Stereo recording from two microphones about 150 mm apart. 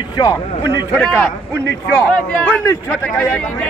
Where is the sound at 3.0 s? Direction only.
10° left (ahead or behind).